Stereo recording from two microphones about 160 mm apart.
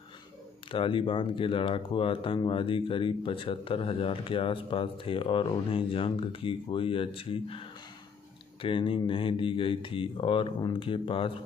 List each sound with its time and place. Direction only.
0.7 s speech: 35° left (ahead or behind)